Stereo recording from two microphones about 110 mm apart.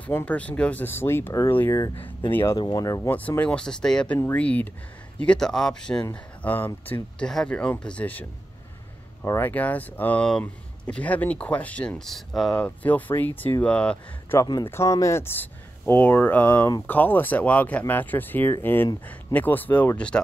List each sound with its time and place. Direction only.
0.0 s speech: 15° left (ahead or behind)
2.6 s speech: 35° left (ahead or behind)
3.0 s speech: 15° left (ahead or behind)
6.4 s speech: 15° left (ahead or behind)
14.7 s speech: 25° left (ahead or behind)